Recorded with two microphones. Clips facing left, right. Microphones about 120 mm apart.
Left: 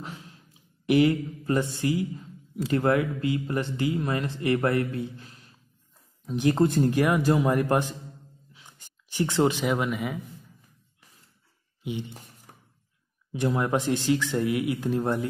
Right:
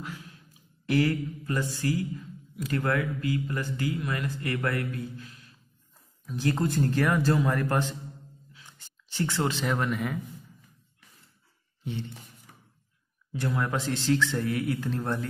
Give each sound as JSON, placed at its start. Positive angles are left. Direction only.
{"t": 0.0, "sound": "a sound", "side_deg": 25}
{"t": 0.8, "sound": "speech", "side_deg": 20}
{"t": 6.2, "sound": "speech", "side_deg": 20}
{"t": 11.8, "sound": "speech", "side_deg": 15}
{"t": 12.5, "sound": "a sound", "side_deg": 45}
{"t": 13.3, "sound": "speech", "side_deg": 20}